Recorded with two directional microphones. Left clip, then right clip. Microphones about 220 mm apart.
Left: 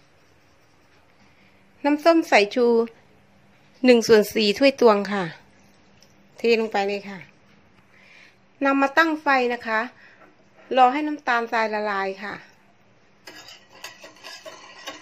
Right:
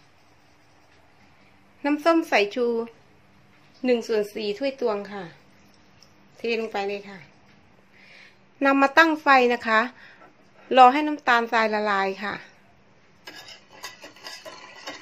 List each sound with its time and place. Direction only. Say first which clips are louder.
1.8 s a woman's voice: left 3 dB; 15° left (ahead or behind)
3.8 s speech: left 8 dB; 30° left (ahead or behind)
8.0 s a woman's voice: right 1 dB; centre (ahead or behind)